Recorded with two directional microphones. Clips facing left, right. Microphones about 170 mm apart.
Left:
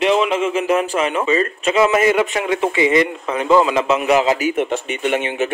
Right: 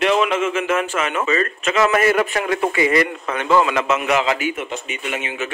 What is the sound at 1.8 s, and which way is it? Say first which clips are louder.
A man's voice: left 2 dB; 15° left (ahead or behind).